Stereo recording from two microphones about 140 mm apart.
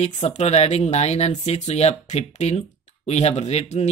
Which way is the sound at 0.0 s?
50° left (ahead or behind).